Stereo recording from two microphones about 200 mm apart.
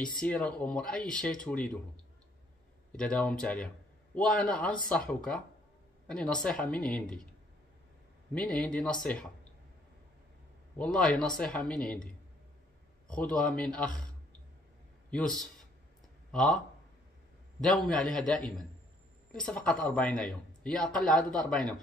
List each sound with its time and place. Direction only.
0.1 s speech: 5° left (ahead or behind)
2.9 s speech: 5° left (ahead or behind)
8.4 s speech: 5° left (ahead or behind)
10.8 s speech: 5° left (ahead or behind)
13.1 s speech: 5° left (ahead or behind)
15.0 s a man's voice: 5° left (ahead or behind)